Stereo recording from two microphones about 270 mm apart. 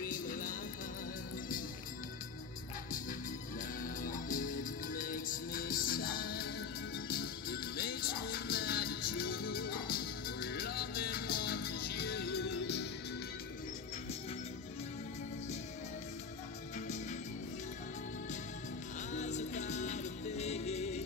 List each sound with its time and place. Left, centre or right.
0.0 s music: left
3.8 s music: left
19.1 s music: left